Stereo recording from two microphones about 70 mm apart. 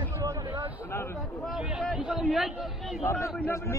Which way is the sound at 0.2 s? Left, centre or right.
Right.